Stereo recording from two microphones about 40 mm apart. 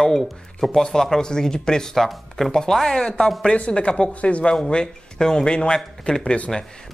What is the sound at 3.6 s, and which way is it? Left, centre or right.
Speech, left.